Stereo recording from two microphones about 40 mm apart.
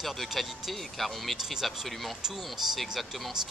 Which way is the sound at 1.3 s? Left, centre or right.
Centre.